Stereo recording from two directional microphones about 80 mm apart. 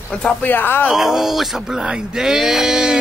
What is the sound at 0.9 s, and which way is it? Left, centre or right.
Speech, centre.